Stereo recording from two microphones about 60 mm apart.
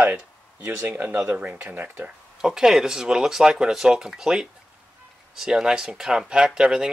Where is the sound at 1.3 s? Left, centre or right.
Right.